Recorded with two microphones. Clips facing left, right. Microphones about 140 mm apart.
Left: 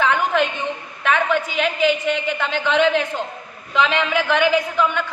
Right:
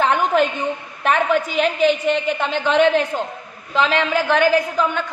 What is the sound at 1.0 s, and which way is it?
A woman's voice, 40° right (ahead or behind).